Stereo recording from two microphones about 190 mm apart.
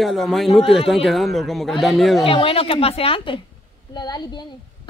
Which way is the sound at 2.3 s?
30° left (ahead or behind).